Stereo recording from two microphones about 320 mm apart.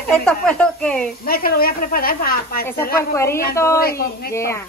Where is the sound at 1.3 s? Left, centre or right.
Left.